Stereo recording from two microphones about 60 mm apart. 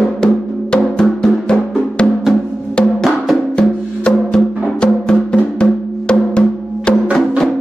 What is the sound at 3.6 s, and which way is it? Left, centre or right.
Music, centre.